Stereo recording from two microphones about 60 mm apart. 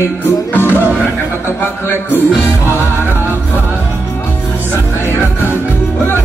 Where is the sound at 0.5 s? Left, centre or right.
Left.